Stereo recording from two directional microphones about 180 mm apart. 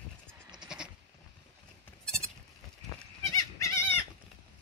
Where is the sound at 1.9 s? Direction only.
5° left (ahead or behind).